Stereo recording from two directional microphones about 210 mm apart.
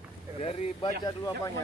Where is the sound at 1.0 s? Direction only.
15° left (ahead or behind).